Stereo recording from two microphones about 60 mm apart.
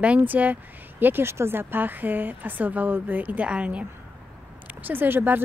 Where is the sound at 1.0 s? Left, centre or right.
Right.